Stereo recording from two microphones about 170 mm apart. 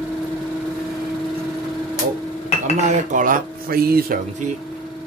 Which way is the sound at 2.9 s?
50° right (ahead or behind).